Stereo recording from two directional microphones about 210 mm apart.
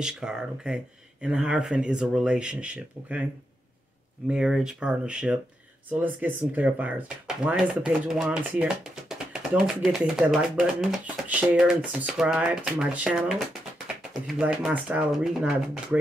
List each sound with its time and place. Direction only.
0.0 s speech: 5° right (ahead or behind)
4.3 s speech: 5° right (ahead or behind)